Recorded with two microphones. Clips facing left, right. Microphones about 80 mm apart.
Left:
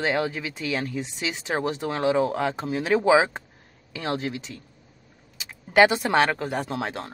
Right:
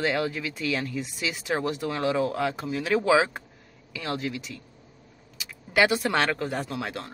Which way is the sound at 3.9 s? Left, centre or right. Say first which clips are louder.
Left 3 dB; left.